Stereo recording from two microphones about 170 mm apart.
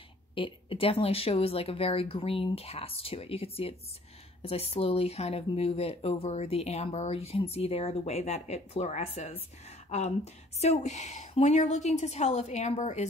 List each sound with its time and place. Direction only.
0.3 s speech: 30° left (ahead or behind)